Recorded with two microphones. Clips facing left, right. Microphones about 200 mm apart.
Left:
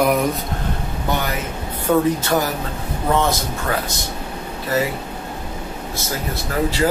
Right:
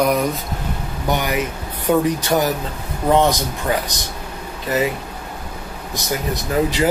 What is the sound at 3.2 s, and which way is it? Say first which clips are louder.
Speech: right 3 dB; 15° right (ahead or behind).